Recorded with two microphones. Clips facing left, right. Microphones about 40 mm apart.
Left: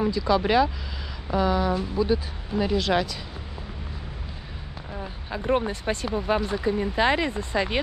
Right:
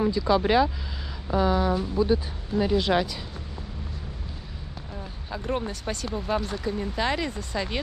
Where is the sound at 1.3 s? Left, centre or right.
Centre.